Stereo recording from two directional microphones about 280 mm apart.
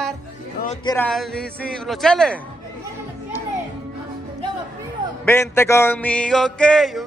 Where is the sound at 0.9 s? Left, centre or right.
Centre.